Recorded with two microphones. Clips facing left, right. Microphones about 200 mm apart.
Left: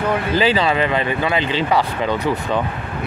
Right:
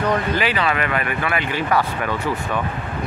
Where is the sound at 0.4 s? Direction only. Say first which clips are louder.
Left 4 dB; 30° left (ahead or behind).